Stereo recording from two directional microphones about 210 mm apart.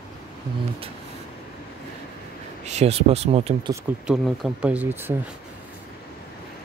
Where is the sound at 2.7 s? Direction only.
30° right (ahead or behind).